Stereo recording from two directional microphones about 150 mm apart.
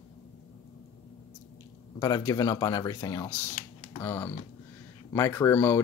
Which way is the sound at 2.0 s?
25° left (ahead or behind).